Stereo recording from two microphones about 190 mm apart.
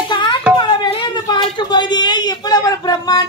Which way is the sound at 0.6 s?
25° left (ahead or behind).